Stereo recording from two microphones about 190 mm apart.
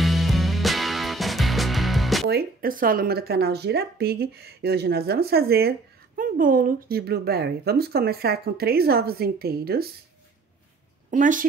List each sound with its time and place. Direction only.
0.0 s music: centre (ahead or behind)
2.2 s speech: 55° right (ahead or behind)
11.1 s a woman's voice: 45° right (ahead or behind)